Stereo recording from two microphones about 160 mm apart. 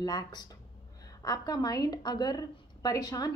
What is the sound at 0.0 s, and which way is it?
A woman's voice, 25° left (ahead or behind).